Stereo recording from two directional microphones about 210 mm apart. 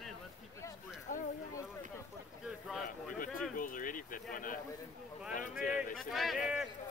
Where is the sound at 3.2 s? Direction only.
40° left (ahead or behind).